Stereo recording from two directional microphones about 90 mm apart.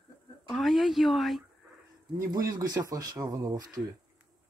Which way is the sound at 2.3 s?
45° right (ahead or behind).